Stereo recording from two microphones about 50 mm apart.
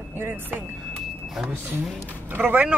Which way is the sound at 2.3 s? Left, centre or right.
Right.